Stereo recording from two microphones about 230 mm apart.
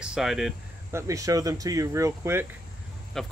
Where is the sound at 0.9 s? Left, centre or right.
Centre.